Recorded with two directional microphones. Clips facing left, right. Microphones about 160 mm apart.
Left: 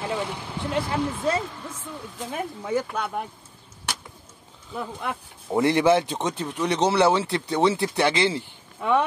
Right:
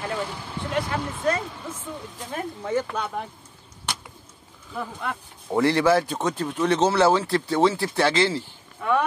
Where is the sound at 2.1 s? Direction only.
5° left (ahead or behind).